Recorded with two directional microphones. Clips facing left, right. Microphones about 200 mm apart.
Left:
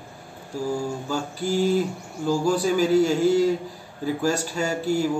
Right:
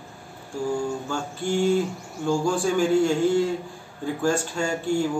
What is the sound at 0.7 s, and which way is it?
A man's voice, 5° left (ahead or behind).